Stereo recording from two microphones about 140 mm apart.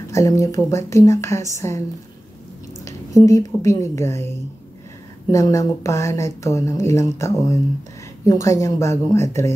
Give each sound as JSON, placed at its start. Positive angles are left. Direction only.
{"t": 0.1, "sound": "speech", "side_deg": 25}
{"t": 3.2, "sound": "speech", "side_deg": 20}
{"t": 5.3, "sound": "speech", "side_deg": 20}